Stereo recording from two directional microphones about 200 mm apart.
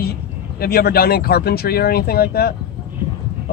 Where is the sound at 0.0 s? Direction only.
50° left (ahead or behind).